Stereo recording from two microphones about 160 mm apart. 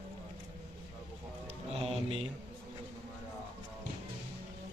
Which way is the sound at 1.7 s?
40° right (ahead or behind).